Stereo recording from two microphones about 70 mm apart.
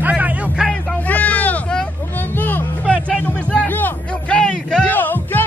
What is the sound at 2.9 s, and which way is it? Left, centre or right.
Music, centre.